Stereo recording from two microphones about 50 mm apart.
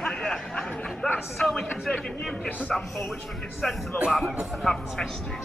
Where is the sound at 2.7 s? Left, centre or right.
Centre.